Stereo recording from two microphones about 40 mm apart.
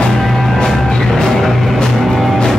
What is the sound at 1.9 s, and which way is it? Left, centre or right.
Music, centre.